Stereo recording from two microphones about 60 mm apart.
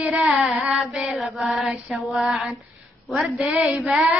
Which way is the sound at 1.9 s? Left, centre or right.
Centre.